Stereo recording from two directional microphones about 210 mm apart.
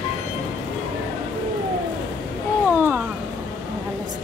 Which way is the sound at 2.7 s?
10° right (ahead or behind).